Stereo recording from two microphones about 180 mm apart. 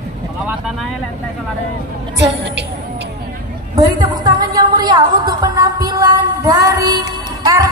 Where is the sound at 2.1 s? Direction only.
80° right.